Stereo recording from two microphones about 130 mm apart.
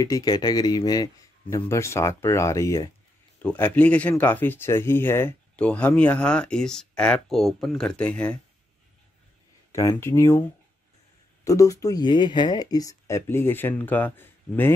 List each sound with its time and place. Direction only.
0.0 s speech: 30° left (ahead or behind)
3.4 s speech: 15° left (ahead or behind)
9.7 s speech: 20° left (ahead or behind)
11.4 s speech: 25° left (ahead or behind)